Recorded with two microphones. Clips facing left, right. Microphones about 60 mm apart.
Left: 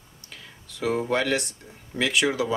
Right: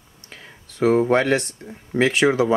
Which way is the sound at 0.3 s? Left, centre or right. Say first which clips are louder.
Right 3 dB; right.